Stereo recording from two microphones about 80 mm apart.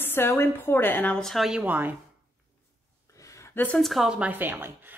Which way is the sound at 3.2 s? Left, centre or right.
Left.